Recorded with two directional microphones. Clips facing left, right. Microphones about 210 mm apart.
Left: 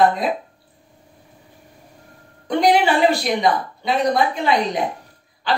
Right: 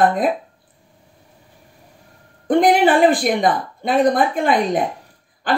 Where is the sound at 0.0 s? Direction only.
55° right (ahead or behind).